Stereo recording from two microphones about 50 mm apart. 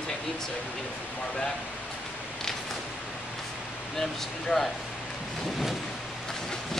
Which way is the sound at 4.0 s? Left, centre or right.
Centre.